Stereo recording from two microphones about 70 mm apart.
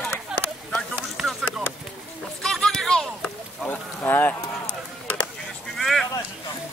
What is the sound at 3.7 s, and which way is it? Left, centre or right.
Speech, left.